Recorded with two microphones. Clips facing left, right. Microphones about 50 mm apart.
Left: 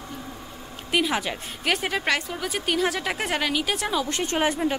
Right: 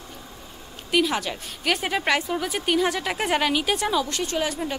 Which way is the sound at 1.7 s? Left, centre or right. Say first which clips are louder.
Right 1 dB; centre.